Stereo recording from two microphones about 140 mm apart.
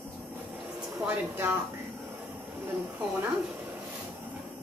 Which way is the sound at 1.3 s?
15° right (ahead or behind).